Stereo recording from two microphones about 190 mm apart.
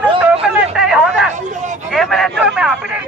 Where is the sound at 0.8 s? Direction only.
Centre (ahead or behind).